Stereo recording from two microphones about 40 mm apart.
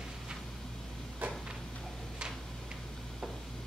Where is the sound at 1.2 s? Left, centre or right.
Right.